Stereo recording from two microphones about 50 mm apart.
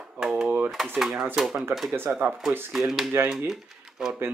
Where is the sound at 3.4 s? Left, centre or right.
Centre.